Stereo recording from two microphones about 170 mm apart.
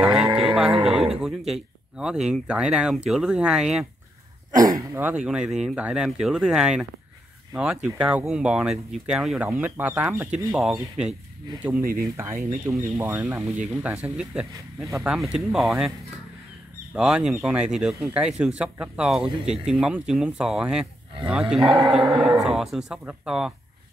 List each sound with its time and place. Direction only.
0.4 s a sound: 5° right (ahead or behind)
0.8 s speech: 5° right (ahead or behind)
4.6 s speech: 20° right (ahead or behind); by 11.1 s 5° right (ahead or behind)
12.0 s speech: 15° right (ahead or behind)
15.1 s speech: 5° right (ahead or behind)
16.9 s speech: 5° right (ahead or behind)